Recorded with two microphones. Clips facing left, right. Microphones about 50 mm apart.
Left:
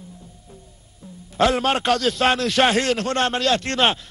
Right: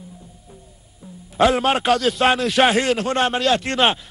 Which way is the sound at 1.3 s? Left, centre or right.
Centre.